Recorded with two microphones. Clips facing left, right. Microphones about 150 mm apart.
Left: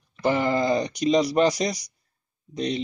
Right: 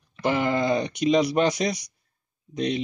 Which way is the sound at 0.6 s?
35° left (ahead or behind).